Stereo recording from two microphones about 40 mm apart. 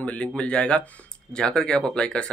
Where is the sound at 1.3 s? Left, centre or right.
Centre.